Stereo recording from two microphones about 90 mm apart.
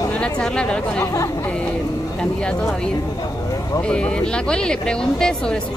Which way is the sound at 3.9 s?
10° left (ahead or behind).